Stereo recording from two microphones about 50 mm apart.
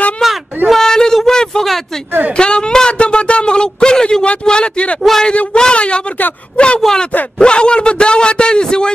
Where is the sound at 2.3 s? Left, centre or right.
Centre.